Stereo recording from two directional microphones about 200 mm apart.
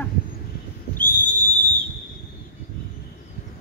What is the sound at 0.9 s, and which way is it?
Whistle, 10° left (ahead or behind).